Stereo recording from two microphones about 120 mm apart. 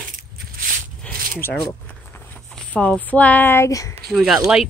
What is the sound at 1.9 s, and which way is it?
Speech, 10° left (ahead or behind).